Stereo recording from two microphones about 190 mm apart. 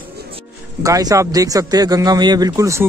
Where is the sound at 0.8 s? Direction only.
15° right (ahead or behind).